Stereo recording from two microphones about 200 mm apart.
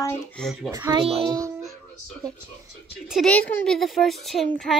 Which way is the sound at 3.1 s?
5° left (ahead or behind).